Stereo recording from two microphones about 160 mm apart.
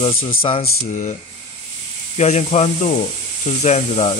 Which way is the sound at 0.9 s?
55° left (ahead or behind).